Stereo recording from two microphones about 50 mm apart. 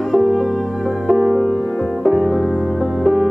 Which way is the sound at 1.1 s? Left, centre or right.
Centre.